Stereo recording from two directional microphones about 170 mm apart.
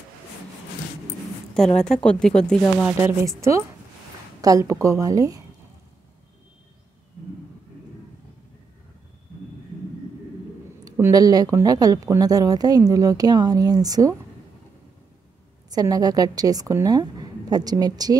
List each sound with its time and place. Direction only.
1.8 s speech: 5° left (ahead or behind)
2.8 s a woman's voice: 10° right (ahead or behind)
10.8 s speech: 20° right (ahead or behind)
15.7 s speech: 20° right (ahead or behind)